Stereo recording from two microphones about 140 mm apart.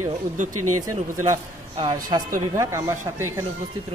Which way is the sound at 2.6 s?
20° right (ahead or behind).